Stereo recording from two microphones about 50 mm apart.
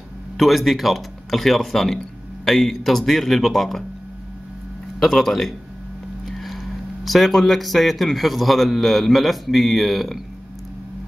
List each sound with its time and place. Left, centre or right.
0.4 s speech: centre
5.0 s speech: centre